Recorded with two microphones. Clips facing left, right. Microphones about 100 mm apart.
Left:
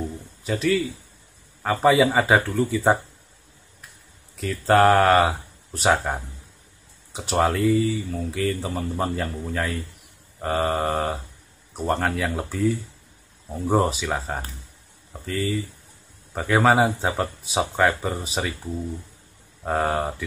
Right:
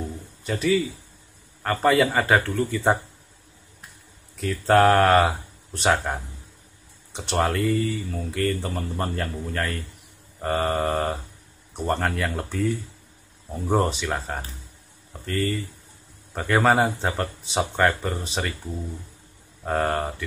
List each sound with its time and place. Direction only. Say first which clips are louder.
0.4 s a man's voice: even; centre (ahead or behind)
4.4 s speech: even; centre (ahead or behind)
19.6 s speech: left 1 dB; 5° left (ahead or behind)